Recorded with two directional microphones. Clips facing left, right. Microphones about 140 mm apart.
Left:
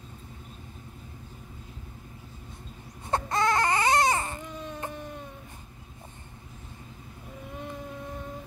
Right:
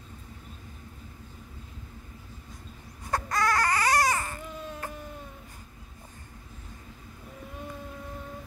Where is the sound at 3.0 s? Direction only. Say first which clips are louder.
Left 2 dB; 25° left (ahead or behind).